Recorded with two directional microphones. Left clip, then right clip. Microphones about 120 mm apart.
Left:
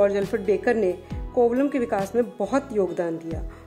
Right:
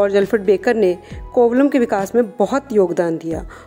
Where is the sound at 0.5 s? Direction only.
45° right (ahead or behind).